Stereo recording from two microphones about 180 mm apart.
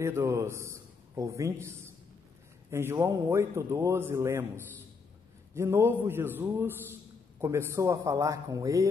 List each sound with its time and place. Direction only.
0.0 s a man's voice: 15° right (ahead or behind)
5.5 s a man's voice: 15° right (ahead or behind)